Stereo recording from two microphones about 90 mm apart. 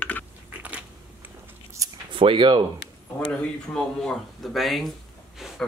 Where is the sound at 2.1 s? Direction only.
80° right.